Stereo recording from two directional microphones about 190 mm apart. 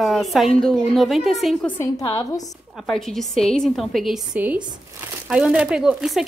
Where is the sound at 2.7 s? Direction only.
Centre (ahead or behind).